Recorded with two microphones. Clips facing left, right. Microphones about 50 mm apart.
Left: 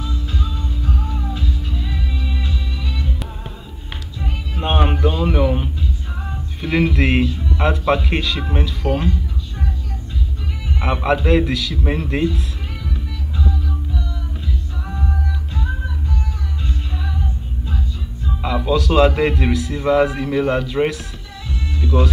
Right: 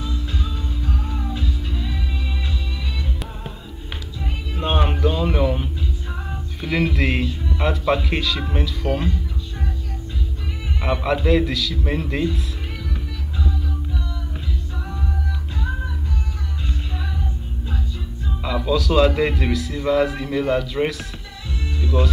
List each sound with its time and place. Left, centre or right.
0.0 s music: right
4.6 s music: centre
5.0 s a sound: centre
6.6 s speech: centre
8.8 s speech: left
10.8 s speech: centre
18.4 s speech: centre
21.9 s speech: left